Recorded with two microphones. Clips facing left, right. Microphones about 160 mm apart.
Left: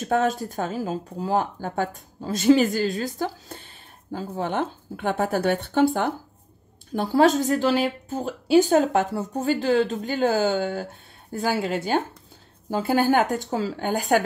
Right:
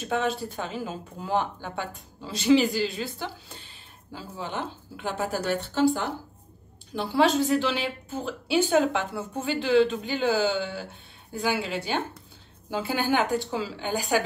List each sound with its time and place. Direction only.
0.0 s a woman's voice: 45° left (ahead or behind)
6.9 s a woman's voice: 45° left (ahead or behind)